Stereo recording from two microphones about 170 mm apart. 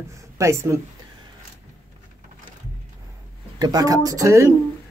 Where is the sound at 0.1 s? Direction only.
15° right (ahead or behind).